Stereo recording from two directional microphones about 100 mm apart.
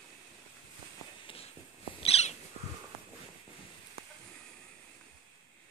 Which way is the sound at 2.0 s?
85° left.